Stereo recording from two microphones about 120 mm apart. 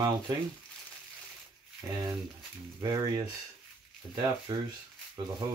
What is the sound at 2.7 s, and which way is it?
Speech, 30° right (ahead or behind).